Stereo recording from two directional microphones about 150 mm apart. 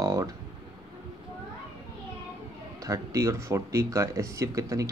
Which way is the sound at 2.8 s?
20° right (ahead or behind).